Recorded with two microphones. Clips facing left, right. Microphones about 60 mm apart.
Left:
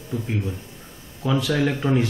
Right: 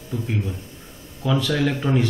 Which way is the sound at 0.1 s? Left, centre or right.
Centre.